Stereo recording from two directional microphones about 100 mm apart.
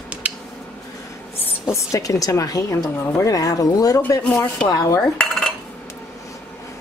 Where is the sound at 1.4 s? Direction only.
30° left (ahead or behind).